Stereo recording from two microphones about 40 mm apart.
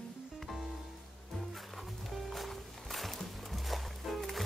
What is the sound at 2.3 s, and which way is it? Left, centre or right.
Music, centre.